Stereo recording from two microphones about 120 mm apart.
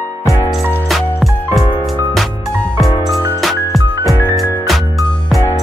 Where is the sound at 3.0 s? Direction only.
Centre (ahead or behind).